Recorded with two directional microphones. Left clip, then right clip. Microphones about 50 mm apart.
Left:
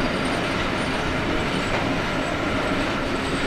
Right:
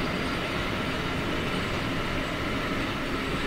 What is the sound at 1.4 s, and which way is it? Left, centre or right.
Train, left.